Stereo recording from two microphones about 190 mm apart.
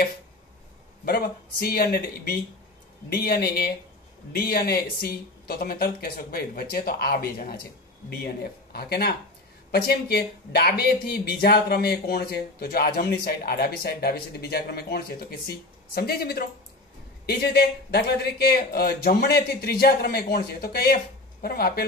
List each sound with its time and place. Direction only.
1.0 s speech: 55° left (ahead or behind)
8.7 s speech: 55° left (ahead or behind)